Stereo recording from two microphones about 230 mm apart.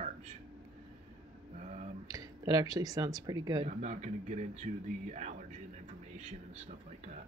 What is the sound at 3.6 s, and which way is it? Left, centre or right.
Speech, right.